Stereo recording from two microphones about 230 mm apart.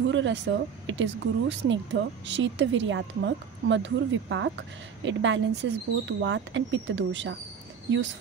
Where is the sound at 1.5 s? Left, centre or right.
Right.